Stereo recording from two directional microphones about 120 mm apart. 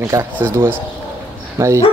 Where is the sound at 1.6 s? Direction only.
20° right (ahead or behind).